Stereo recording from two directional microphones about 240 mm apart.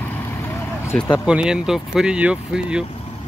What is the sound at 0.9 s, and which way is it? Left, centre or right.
Speech, centre.